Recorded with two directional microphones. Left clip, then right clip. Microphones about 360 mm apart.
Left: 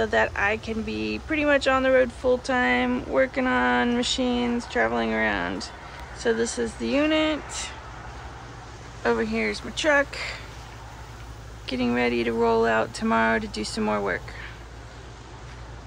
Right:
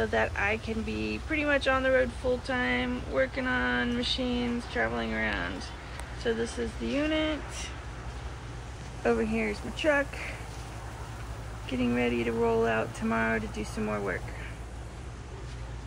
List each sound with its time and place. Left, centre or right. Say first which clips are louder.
0.0 s speech: left 5 dB; centre
9.0 s speech: left 4 dB; centre
11.7 s speech: left 5 dB; centre
13.5 s speech: left 6 dB; left
13.8 s speech: left 7 dB; centre